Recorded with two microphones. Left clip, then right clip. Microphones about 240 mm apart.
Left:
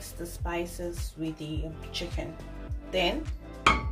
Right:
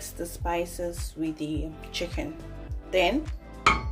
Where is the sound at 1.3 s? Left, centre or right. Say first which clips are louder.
Right 5 dB; right.